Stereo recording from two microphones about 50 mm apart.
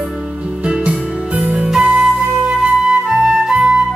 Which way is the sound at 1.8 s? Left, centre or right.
Centre.